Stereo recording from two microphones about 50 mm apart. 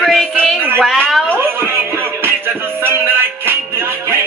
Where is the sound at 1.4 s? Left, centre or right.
Right.